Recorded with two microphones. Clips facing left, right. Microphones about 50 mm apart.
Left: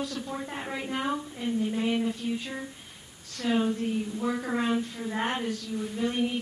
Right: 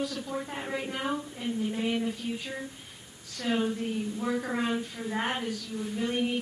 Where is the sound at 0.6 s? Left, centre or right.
Centre.